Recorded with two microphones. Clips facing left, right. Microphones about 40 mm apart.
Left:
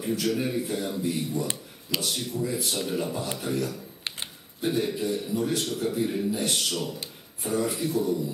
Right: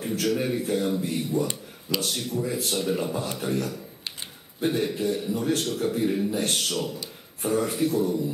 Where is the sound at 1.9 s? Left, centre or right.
Right.